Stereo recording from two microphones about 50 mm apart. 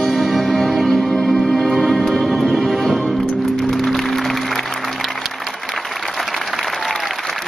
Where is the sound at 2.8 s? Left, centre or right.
Centre.